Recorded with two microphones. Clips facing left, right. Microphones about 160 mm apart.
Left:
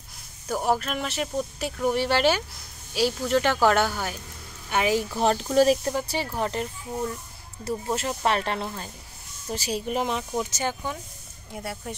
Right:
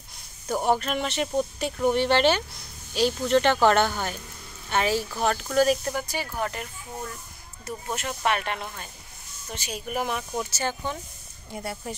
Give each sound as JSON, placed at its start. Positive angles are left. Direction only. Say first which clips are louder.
{"t": 0.5, "sound": "speech", "louder": "right 1 dB", "side_deg": 0}
{"t": 5.2, "sound": "speech", "louder": "left 2 dB", "side_deg": 30}